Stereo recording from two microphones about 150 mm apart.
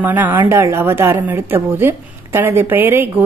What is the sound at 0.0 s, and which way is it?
A woman's voice, 15° right (ahead or behind).